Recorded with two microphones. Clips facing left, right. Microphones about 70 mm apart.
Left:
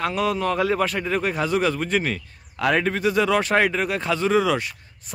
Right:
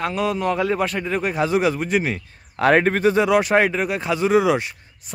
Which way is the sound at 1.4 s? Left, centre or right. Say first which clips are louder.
Right 3 dB; centre.